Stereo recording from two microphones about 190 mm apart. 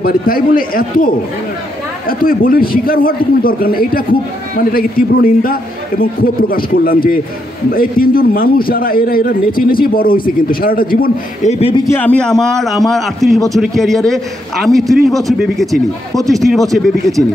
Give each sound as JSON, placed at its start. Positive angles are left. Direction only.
{"t": 0.0, "sound": "a man's voice", "side_deg": 50}
{"t": 11.5, "sound": "a man's voice", "side_deg": 30}
{"t": 11.9, "sound": "a man's voice", "side_deg": 10}